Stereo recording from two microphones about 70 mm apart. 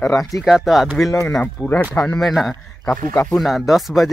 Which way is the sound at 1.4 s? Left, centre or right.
Left.